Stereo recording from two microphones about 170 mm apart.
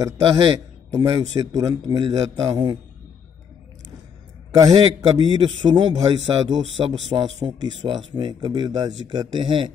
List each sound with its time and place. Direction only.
0.0 s a man's voice: 20° right (ahead or behind)
4.6 s a man's voice: 25° right (ahead or behind)